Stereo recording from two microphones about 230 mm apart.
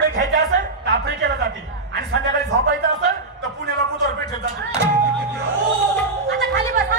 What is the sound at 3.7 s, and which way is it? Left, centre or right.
Speech, centre.